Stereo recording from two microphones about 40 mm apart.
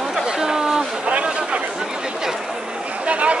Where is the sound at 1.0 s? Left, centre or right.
Right.